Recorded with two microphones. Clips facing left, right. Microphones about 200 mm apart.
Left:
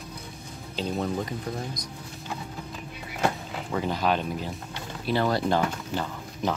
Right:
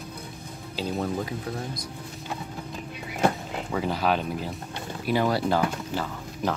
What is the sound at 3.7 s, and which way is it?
Speech, 5° right (ahead or behind).